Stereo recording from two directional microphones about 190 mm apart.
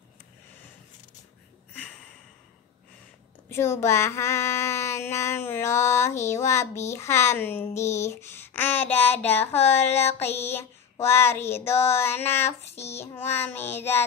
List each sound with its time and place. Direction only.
1.7 s a sound: 5° left (ahead or behind)
3.4 s speech: 15° left (ahead or behind)
12.6 s child singing: 35° left (ahead or behind)
12.9 s speech: 15° left (ahead or behind)